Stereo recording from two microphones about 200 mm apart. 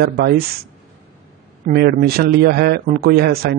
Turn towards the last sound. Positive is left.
turn(degrees=-50)  # may be behind; listen again after turning